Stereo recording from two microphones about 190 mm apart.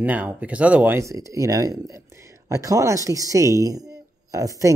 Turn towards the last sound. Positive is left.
turn(degrees=-15)  # may be behind; listen again after turning